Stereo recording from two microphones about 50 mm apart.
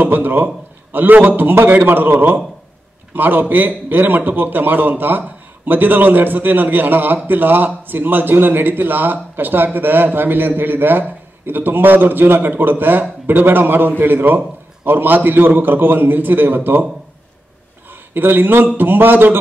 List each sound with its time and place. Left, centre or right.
0.0 s a man's voice: right
18.1 s a man's voice: right